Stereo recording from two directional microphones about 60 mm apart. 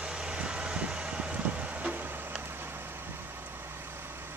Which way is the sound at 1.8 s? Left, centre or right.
Right.